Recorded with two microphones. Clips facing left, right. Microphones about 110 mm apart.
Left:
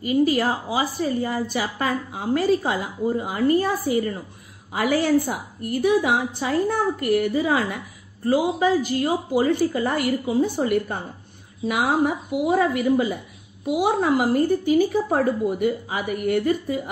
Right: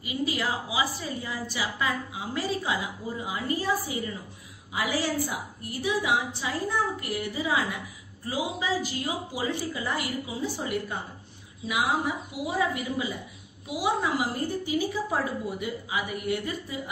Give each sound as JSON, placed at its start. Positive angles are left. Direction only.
{"t": 0.0, "sound": "a woman's voice", "side_deg": 45}